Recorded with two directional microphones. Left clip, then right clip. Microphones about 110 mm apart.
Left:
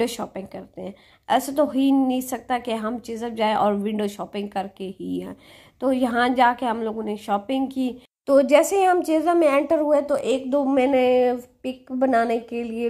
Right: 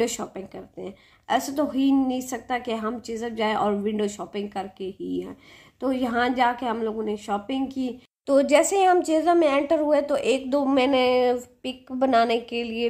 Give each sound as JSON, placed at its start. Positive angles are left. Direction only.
{"t": 0.0, "sound": "a woman's voice", "side_deg": 45}
{"t": 10.2, "sound": "a woman's voice", "side_deg": 15}